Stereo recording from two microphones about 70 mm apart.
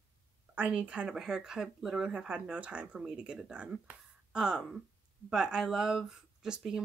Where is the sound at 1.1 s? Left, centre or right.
Centre.